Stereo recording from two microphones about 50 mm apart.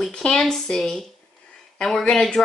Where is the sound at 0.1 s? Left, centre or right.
Centre.